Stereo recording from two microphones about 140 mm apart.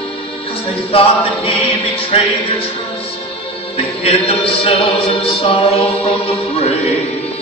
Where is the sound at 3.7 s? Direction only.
45° left (ahead or behind).